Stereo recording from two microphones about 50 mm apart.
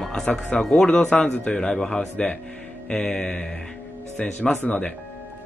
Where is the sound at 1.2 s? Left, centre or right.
Left.